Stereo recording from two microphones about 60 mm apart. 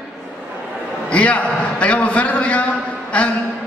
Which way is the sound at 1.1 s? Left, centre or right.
Left.